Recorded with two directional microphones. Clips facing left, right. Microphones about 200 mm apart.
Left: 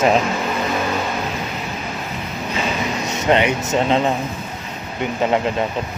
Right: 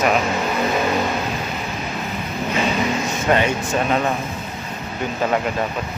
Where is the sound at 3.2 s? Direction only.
20° left (ahead or behind).